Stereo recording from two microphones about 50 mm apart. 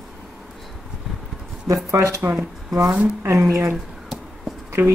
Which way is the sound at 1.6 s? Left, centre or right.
Right.